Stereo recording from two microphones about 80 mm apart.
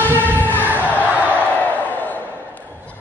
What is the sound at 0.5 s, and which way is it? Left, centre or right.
Crowd, right.